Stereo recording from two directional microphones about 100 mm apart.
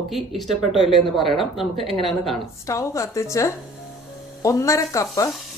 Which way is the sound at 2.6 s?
30° left (ahead or behind).